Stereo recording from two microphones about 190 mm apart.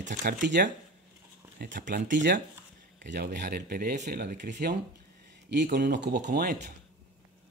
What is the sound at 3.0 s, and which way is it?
Speech, 60° right (ahead or behind).